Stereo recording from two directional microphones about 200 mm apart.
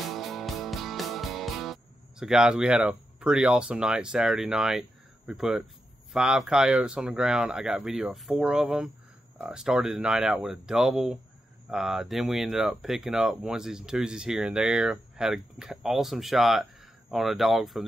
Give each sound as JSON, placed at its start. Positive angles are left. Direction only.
{"t": 0.1, "sound": "music", "side_deg": 0}
{"t": 6.1, "sound": "speech", "side_deg": -5}